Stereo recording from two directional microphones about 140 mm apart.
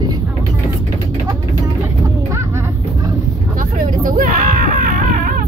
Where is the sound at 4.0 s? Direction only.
75° right (ahead or behind).